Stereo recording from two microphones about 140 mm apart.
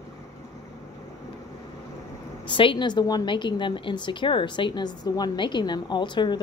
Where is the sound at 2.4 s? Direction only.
35° left (ahead or behind).